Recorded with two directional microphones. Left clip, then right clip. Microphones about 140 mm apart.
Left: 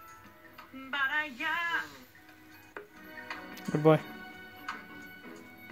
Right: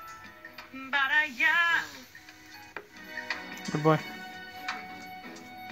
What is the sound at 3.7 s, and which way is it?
Speech, 25° left (ahead or behind).